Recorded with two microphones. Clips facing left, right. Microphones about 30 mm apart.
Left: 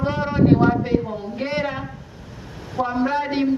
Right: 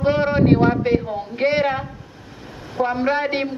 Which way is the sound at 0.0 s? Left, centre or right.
Right.